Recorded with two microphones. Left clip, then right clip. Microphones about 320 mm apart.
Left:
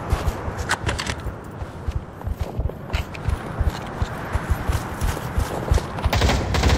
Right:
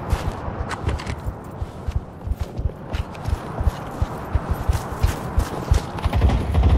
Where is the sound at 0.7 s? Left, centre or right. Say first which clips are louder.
Left 8 dB; left.